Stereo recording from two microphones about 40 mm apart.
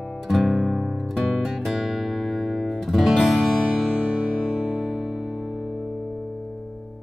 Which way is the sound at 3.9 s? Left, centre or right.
Centre.